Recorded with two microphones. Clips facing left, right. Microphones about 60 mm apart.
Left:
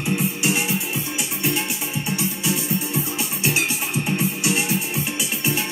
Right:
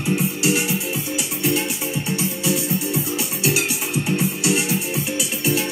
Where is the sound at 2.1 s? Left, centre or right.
Left.